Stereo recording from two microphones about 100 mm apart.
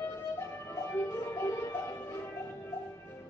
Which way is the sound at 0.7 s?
25° left (ahead or behind).